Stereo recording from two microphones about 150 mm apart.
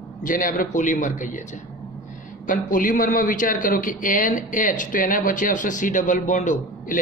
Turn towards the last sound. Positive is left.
turn(degrees=55)  # may be behind; listen again after turning